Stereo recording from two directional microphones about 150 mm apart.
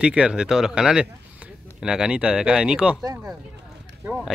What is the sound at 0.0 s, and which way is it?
Speech, 5° right (ahead or behind).